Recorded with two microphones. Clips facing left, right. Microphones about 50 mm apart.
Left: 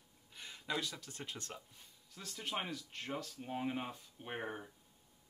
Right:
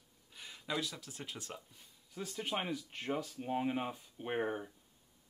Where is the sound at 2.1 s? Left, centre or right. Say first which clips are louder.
Right 3 dB; centre.